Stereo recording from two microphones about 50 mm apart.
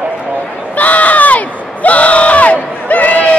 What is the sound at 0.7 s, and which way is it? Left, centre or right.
Crowd, left.